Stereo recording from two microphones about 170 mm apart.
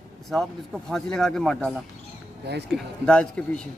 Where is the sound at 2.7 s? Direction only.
5° left (ahead or behind).